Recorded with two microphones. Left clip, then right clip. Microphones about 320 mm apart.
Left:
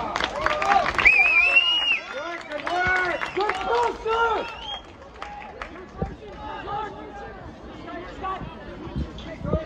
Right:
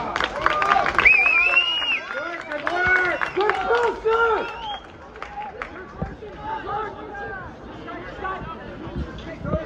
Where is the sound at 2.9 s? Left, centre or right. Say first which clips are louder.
Right 3 dB; left.